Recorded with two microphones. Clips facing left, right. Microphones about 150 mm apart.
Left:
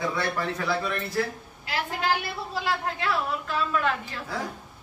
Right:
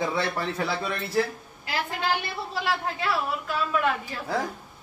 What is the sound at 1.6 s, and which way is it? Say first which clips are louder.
A woman's voice: left 1 dB; centre (ahead or behind).